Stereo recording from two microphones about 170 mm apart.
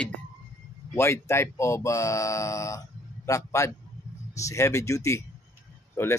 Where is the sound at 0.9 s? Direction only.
15° left (ahead or behind).